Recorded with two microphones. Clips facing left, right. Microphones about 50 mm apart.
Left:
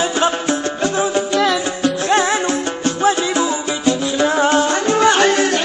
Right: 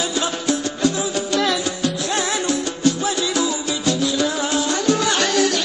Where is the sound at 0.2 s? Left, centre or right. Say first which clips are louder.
Left 5 dB; left.